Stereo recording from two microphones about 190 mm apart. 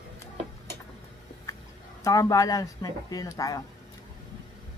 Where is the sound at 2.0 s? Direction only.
20° left (ahead or behind).